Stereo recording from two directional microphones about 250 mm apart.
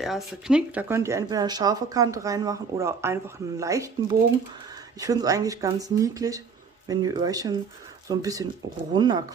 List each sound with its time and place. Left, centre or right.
0.0 s speech: centre